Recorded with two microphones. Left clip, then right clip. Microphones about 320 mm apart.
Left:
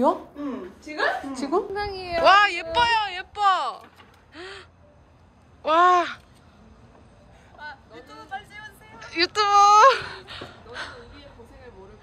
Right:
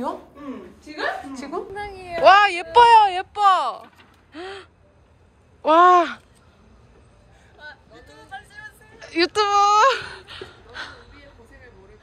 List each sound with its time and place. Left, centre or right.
1.3 s a woman's voice: centre
1.8 s a woman's voice: left
2.2 s speech: centre
4.3 s gasp: centre
5.6 s speech: centre
7.5 s vehicle: left
9.0 s speech: centre